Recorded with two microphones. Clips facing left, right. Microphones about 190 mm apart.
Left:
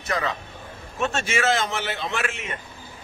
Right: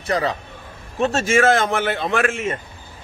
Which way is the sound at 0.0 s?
35° right (ahead or behind).